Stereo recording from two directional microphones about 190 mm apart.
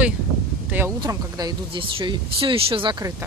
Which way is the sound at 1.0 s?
20° right (ahead or behind).